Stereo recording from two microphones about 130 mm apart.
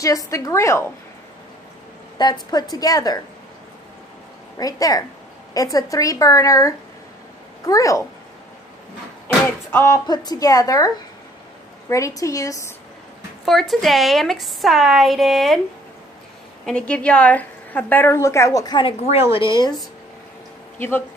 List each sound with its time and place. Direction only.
0.0 s a woman's voice: 25° left (ahead or behind)
2.1 s a woman's voice: 35° left (ahead or behind)
4.6 s a woman's voice: 30° left (ahead or behind)
9.7 s a woman's voice: 20° left (ahead or behind)
10.0 s a woman's voice: 30° left (ahead or behind)
11.9 s a woman's voice: 25° left (ahead or behind)
13.5 s a woman's voice: centre (ahead or behind)
16.6 s a woman's voice: 10° left (ahead or behind); by 18.9 s 30° left (ahead or behind)
18.9 s a woman's voice: 50° left (ahead or behind)